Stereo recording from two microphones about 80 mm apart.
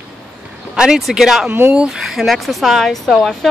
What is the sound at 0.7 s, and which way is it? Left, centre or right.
Speech, centre.